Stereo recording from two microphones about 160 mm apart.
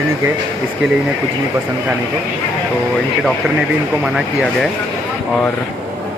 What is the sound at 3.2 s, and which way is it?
Speech, 5° right (ahead or behind).